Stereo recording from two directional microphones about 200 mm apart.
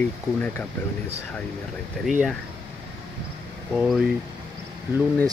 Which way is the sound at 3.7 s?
Centre (ahead or behind).